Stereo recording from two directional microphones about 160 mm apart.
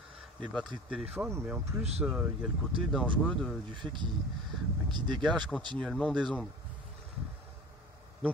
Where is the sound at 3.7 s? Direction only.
30° right (ahead or behind).